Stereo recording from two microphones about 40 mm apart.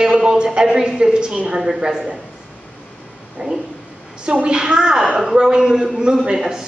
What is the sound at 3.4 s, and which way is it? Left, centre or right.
A woman's voice, centre.